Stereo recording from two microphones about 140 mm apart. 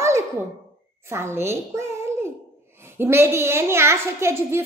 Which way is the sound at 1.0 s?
20° right (ahead or behind).